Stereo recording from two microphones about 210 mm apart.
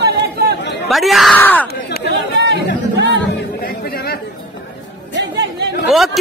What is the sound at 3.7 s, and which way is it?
Chatter, 45° left (ahead or behind).